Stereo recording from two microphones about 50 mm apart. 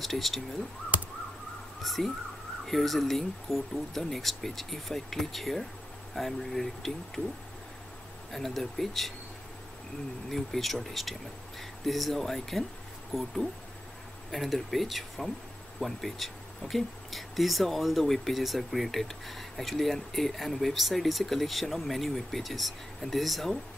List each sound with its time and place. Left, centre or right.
0.0 s speech: centre
1.8 s speech: centre
8.3 s speech: centre
10.3 s speech: centre